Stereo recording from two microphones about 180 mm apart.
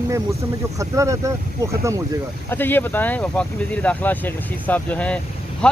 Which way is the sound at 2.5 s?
10° left (ahead or behind).